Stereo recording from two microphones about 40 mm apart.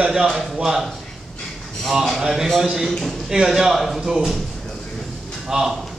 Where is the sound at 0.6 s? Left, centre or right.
Centre.